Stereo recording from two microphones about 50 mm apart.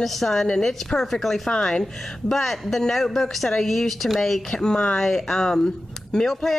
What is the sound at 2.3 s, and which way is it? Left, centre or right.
A woman's voice, centre.